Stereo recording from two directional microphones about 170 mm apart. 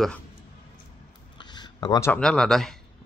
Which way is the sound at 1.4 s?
25° left (ahead or behind).